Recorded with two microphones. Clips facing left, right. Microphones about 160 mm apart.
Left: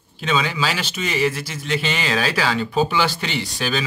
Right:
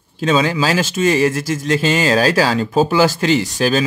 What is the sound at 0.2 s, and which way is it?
A man's voice, 40° right (ahead or behind).